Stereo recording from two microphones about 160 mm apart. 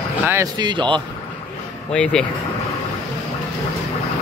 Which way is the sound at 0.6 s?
30° right (ahead or behind).